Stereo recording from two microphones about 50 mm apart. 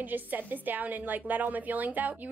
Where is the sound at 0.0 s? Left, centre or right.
Right.